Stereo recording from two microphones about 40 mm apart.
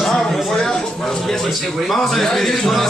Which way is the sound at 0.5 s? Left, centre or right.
Centre.